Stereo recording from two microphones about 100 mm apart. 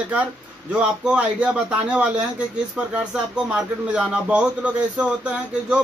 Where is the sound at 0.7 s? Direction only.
10° right (ahead or behind).